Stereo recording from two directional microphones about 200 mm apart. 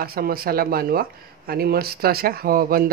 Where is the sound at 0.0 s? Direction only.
50° right (ahead or behind).